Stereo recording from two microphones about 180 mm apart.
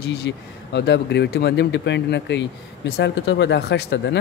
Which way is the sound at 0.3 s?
80° left.